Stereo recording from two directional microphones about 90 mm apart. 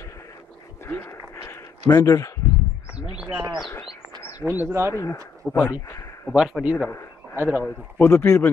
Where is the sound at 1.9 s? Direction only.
35° left (ahead or behind).